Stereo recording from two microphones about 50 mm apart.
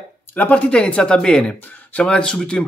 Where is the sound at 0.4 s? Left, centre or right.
Left.